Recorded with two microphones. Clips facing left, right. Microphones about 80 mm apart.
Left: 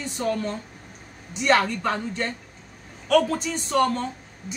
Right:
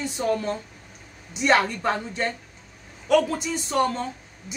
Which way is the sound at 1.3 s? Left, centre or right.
Right.